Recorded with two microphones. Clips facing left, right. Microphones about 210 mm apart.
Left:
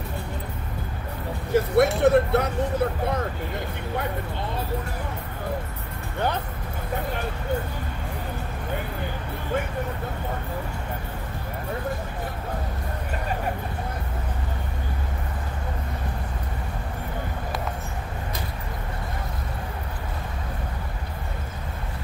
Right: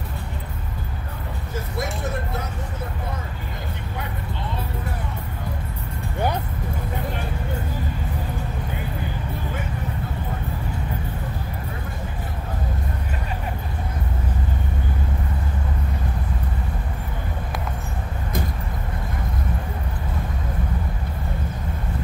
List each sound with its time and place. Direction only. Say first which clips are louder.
1.5 s vehicle: left 11 dB; 65° left (ahead or behind)